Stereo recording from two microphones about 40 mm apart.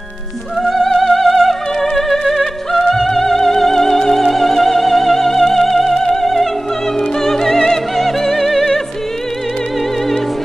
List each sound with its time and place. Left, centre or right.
0.6 s music: centre